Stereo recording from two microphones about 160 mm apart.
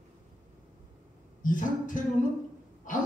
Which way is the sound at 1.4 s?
55° left (ahead or behind).